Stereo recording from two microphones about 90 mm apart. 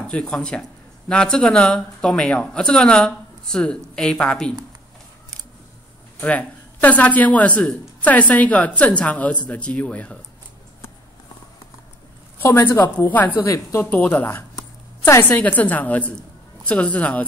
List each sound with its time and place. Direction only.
0.0 s speech: 10° left (ahead or behind)
6.2 s speech: 15° left (ahead or behind)
12.4 s a woman's voice: 25° left (ahead or behind)
13.5 s speech: 35° left (ahead or behind)
13.8 s a woman's voice: 20° left (ahead or behind)